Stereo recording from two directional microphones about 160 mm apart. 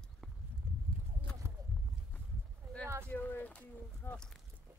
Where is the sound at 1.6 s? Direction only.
20° right (ahead or behind).